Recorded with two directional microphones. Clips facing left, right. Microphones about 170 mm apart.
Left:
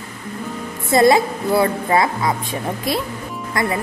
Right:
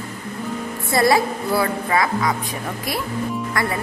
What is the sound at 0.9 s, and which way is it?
A woman's voice, 20° left (ahead or behind).